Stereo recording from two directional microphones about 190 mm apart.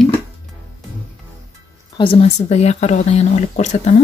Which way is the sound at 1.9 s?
30° left (ahead or behind).